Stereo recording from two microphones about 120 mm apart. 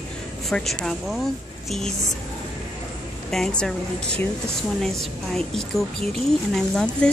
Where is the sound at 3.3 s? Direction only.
5° left (ahead or behind).